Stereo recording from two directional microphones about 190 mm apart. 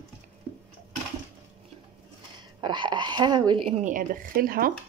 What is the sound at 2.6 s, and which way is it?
Speech, 25° right (ahead or behind).